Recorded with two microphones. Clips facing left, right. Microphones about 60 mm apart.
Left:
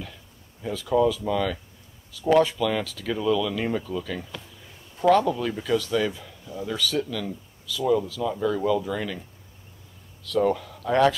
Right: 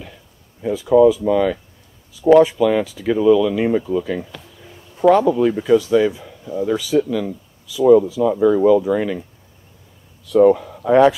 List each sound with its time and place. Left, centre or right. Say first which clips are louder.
0.0 s speech: right 2 dB; centre
10.2 s speech: right 11 dB; centre